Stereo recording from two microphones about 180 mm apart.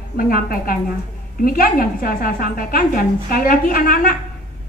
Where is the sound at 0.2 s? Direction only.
55° left (ahead or behind).